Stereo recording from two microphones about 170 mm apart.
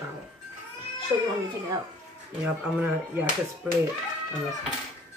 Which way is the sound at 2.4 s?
10° right (ahead or behind).